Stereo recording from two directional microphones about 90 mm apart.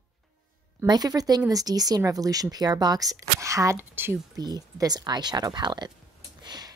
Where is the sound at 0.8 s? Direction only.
50° right (ahead or behind).